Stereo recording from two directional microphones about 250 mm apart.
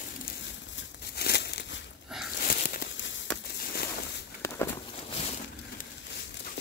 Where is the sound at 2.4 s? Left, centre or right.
Left.